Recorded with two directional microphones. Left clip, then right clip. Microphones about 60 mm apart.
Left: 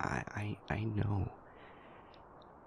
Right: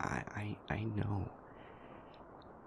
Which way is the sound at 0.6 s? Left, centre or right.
Centre.